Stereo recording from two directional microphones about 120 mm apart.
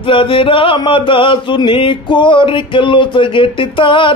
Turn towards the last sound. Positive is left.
turn(degrees=45)  # may be behind; listen again after turning